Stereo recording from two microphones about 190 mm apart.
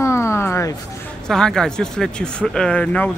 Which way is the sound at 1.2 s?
5° left (ahead or behind).